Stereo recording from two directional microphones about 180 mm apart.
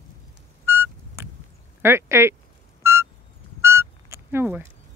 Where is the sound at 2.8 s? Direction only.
15° right (ahead or behind).